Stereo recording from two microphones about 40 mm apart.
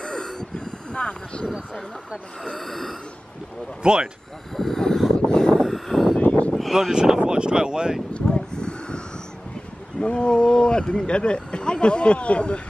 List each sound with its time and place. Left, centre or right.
0.0 s gasp: centre
2.6 s gasp: centre
3.8 s speech: right
4.6 s vehicle: centre
5.6 s vehicle: centre
6.1 s a sound: left
6.9 s speech: centre
8.3 s a sound: centre
10.0 s speech: left